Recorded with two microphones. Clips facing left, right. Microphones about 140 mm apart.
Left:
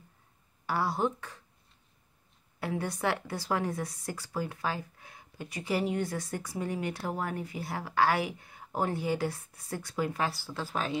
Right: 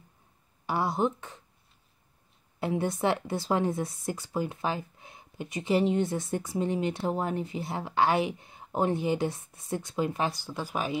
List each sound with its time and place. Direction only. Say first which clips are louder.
0.7 s speech: right 2 dB; 20° right (ahead or behind)
2.6 s speech: right 4 dB; 25° right (ahead or behind)